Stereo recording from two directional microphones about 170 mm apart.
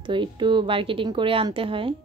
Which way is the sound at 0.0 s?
30° right (ahead or behind).